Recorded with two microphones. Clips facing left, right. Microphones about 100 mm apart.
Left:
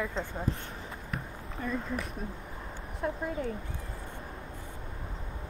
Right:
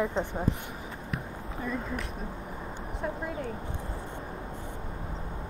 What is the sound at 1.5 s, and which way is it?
Speech, centre (ahead or behind).